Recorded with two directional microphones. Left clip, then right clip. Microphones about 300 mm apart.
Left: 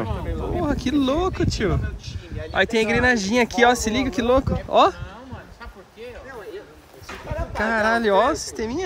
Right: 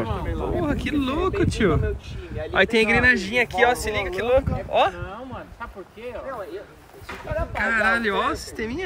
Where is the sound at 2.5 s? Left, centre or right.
Centre.